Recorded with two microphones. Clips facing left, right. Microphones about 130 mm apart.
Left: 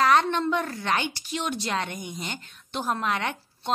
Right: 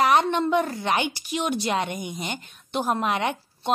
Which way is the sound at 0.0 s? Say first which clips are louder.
Right 1 dB; 15° right (ahead or behind).